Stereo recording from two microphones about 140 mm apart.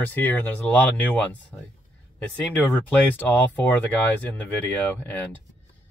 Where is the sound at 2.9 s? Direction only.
10° left (ahead or behind).